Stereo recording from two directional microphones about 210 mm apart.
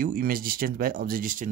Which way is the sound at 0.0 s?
45° right (ahead or behind).